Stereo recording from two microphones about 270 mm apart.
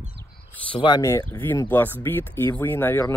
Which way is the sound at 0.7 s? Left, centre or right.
Centre.